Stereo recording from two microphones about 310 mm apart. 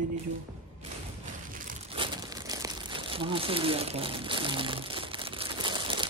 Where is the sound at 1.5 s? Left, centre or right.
Right.